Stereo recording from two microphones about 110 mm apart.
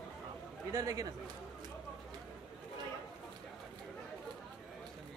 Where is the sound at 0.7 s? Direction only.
30° right (ahead or behind).